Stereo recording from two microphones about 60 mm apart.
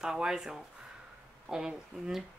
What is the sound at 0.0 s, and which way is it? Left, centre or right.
Speech, centre.